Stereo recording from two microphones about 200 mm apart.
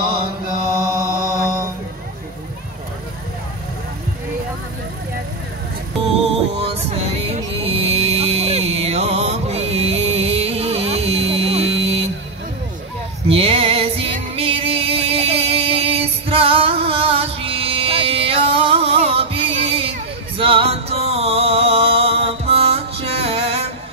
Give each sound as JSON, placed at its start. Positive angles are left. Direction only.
{"t": 0.0, "sound": "chant", "side_deg": -25}
{"t": 6.2, "sound": "music", "side_deg": -30}
{"t": 13.3, "sound": "female singing", "side_deg": -30}
{"t": 20.3, "sound": "music", "side_deg": -25}